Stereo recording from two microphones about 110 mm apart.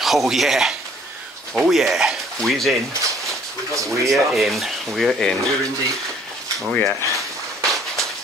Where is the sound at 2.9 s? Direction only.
30° right (ahead or behind).